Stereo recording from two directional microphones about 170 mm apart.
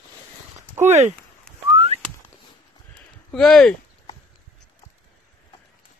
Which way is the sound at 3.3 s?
5° left (ahead or behind).